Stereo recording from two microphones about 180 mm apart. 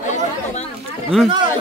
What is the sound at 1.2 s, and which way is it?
Speech, 25° right (ahead or behind).